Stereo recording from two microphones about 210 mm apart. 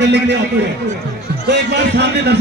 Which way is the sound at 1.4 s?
55° right (ahead or behind).